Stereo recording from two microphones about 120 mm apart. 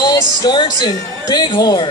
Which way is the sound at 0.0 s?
35° left (ahead or behind).